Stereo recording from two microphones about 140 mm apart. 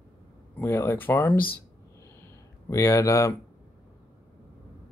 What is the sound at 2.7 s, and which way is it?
Speech, 20° left (ahead or behind).